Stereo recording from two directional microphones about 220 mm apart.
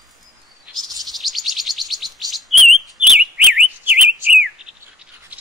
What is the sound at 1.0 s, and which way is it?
Bird, centre (ahead or behind).